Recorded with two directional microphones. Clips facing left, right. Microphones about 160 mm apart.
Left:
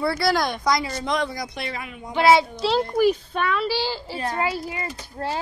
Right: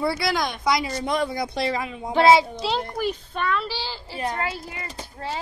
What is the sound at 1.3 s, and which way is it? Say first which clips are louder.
Speech: right 6 dB; 30° right (ahead or behind).